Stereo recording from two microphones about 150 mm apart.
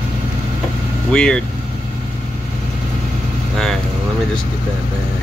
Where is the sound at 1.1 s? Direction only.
5° left (ahead or behind).